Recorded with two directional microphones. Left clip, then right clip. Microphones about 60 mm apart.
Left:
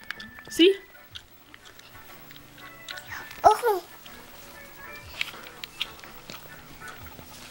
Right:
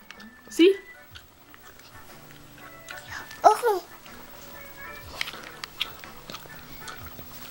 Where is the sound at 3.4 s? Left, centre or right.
Centre.